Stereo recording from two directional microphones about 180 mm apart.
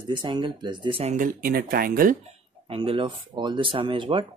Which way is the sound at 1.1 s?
50° right (ahead or behind).